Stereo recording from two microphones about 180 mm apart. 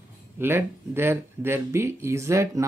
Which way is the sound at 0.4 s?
15° right (ahead or behind).